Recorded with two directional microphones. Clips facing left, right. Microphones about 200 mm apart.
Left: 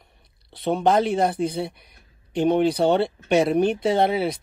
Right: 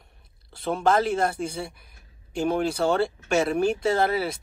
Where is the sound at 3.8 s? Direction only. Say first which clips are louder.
Left 3 dB; centre (ahead or behind).